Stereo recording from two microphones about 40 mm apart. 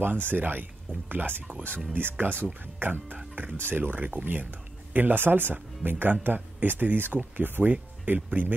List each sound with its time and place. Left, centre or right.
0.0 s speech: right
3.5 s speech: right